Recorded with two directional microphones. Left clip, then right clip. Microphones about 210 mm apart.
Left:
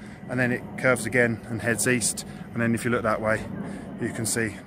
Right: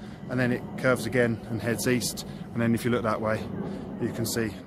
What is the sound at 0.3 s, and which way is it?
Speech, 10° left (ahead or behind).